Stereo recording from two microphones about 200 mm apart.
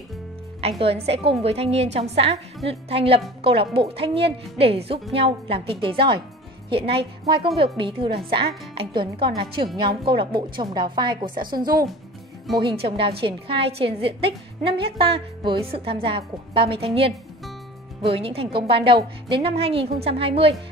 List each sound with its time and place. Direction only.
0.6 s a woman's voice: 30° right (ahead or behind)